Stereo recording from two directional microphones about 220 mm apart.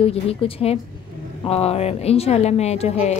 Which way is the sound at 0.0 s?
25° left (ahead or behind).